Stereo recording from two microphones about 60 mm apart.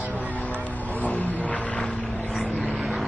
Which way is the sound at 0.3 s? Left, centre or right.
Left.